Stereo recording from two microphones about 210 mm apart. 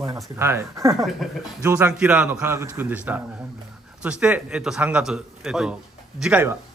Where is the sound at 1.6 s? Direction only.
10° right (ahead or behind).